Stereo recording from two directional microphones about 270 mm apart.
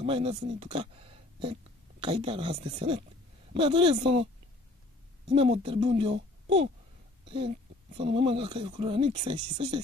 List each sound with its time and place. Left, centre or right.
0.0 s speech: centre
5.3 s speech: right
7.2 s speech: centre